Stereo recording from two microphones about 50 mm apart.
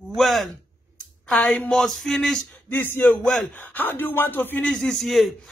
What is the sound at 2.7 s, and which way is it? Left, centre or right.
Speech, left.